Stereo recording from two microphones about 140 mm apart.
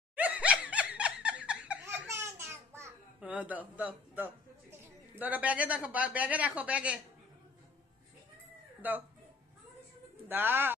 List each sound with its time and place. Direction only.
0.1 s laughter: 10° right (ahead or behind)
2.1 s a sound: 20° right (ahead or behind)
3.2 s a woman's voice: 10° right (ahead or behind)
8.8 s speech: 10° right (ahead or behind)
10.2 s speech: 15° right (ahead or behind)